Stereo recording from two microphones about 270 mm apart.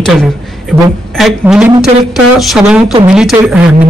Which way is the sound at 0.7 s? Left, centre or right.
Centre.